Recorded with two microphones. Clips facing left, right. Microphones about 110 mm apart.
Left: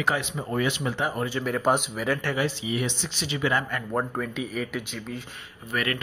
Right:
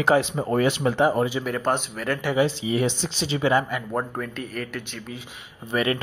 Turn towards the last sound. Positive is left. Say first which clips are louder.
# right 5 dB
turn(degrees=-25)  # may be behind; listen again after turning